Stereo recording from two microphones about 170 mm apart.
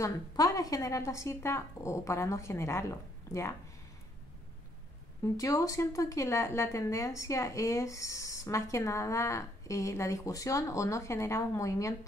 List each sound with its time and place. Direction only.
0.0 s a woman's voice: 20° left (ahead or behind)
5.2 s a woman's voice: 20° left (ahead or behind)